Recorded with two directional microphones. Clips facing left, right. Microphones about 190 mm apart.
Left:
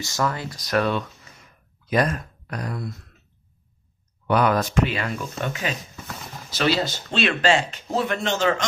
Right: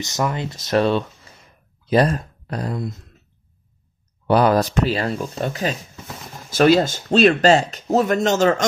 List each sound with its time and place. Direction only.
0.0 s speech: 20° right (ahead or behind)
4.3 s speech: 35° right (ahead or behind)
6.5 s speech: 50° right (ahead or behind)